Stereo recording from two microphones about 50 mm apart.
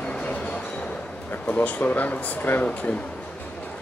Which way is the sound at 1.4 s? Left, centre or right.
Left.